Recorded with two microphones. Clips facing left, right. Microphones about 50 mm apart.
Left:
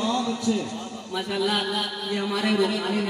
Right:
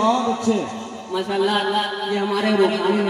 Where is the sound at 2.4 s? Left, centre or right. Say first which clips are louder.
Right 5 dB; right.